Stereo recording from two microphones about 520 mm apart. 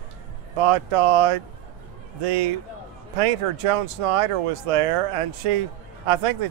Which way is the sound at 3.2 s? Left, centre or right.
Right.